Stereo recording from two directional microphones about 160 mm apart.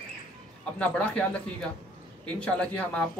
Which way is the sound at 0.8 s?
10° left (ahead or behind).